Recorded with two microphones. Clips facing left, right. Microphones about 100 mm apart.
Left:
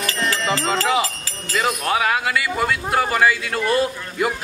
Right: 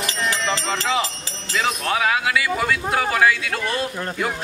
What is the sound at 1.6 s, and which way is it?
A man's voice, 5° left (ahead or behind).